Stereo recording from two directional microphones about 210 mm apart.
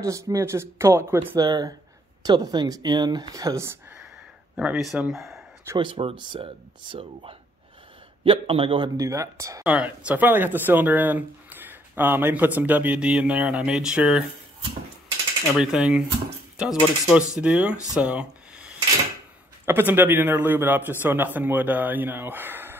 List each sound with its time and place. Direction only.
0.0 s speech: 15° right (ahead or behind)
4.6 s speech: centre (ahead or behind)
5.7 s speech: 25° right (ahead or behind); by 14.2 s 5° right (ahead or behind)
15.5 s speech: 5° right (ahead or behind)
17.9 s a sound: 5° right (ahead or behind)
19.6 s speech: 10° right (ahead or behind)